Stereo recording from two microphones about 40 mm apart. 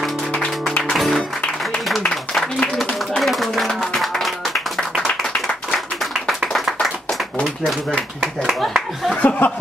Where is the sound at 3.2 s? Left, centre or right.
Centre.